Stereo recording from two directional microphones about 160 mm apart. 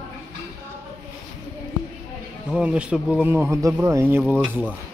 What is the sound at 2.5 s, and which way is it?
Speech, 5° right (ahead or behind).